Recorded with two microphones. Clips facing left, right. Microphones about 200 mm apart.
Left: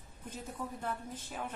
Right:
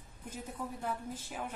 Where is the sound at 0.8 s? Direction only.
10° right (ahead or behind).